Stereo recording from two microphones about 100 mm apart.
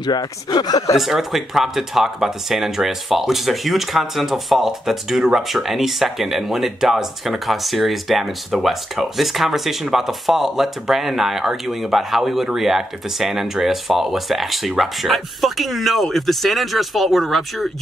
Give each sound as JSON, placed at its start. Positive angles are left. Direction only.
{"t": 0.0, "sound": "speech", "side_deg": 45}
{"t": 0.9, "sound": "speech", "side_deg": 0}